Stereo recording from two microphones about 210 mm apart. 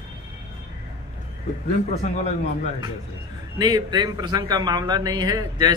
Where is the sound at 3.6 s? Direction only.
20° right (ahead or behind).